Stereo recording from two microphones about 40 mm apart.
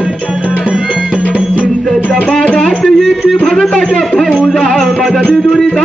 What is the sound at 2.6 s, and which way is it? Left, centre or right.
Music, centre.